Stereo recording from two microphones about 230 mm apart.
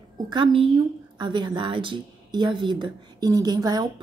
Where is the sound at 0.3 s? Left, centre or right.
Right.